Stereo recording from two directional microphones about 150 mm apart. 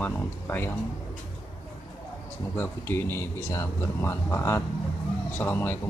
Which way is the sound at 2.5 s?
15° left (ahead or behind).